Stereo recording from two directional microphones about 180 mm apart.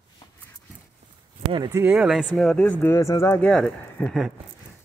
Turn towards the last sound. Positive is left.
turn(degrees=0)  # may be behind; listen again after turning